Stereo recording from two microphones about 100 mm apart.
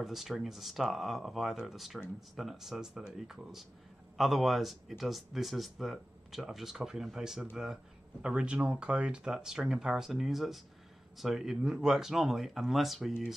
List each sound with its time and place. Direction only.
0.0 s speech: 5° right (ahead or behind)